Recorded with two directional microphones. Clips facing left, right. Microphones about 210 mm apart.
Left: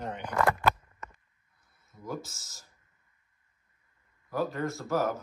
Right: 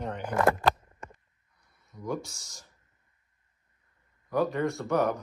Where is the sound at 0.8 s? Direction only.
30° right (ahead or behind).